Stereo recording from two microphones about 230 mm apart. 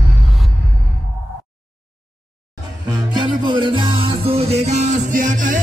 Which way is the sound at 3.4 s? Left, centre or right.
Right.